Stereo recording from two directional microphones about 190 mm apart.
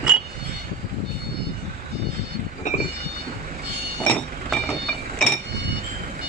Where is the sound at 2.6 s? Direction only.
40° left (ahead or behind).